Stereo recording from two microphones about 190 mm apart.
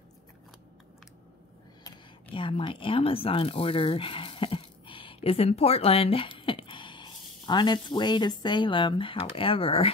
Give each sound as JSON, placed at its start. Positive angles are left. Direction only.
{"t": 2.3, "sound": "speech", "side_deg": 25}